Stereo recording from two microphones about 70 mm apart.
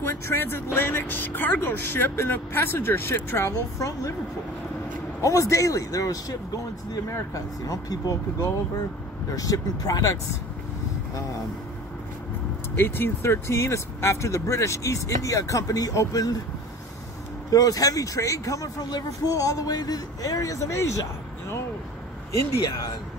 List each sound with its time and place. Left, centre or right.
0.0 s speech: left
5.2 s a man's voice: left
9.3 s a man's voice: left
12.7 s speech: left
17.5 s a man's voice: left
18.8 s a man's voice: left
22.6 s speech: left